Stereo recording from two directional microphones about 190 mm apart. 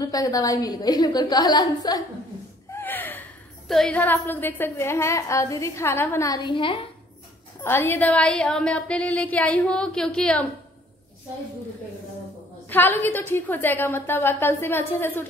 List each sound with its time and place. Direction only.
0.0 s a woman's voice: 20° left (ahead or behind)
2.7 s a woman's voice: 10° left (ahead or behind); by 6.8 s 25° left (ahead or behind)
7.6 s a woman's voice: 10° left (ahead or behind)
12.6 s a woman's voice: 10° left (ahead or behind)